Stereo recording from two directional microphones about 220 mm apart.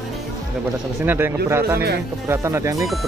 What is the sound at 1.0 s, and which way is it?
Speech, 10° right (ahead or behind).